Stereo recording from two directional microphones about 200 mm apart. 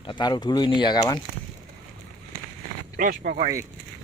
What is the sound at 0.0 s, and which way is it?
Speech, 20° left (ahead or behind).